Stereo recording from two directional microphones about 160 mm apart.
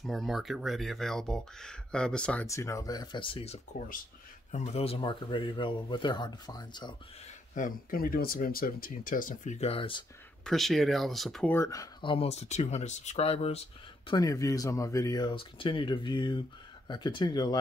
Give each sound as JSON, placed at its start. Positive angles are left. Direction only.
{"t": 0.0, "sound": "speech", "side_deg": 0}
{"t": 2.4, "sound": "speech", "side_deg": 20}
{"t": 7.5, "sound": "speech", "side_deg": 60}
{"t": 10.4, "sound": "speech", "side_deg": 0}
{"t": 11.5, "sound": "speech", "side_deg": 20}
{"t": 14.1, "sound": "speech", "side_deg": 20}